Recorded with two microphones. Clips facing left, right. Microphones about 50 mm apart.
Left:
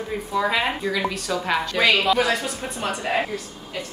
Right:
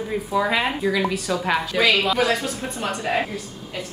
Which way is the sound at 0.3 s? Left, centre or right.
Centre.